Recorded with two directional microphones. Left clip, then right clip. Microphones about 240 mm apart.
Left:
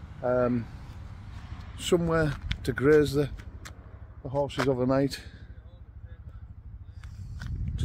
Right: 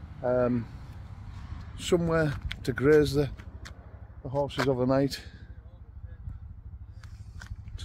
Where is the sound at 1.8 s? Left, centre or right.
Centre.